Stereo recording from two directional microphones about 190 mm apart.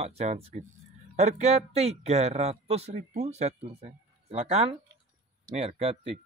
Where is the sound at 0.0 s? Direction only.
35° right (ahead or behind).